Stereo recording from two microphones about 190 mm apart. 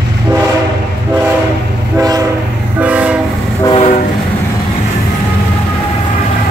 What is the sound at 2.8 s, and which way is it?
Train, 5° right (ahead or behind).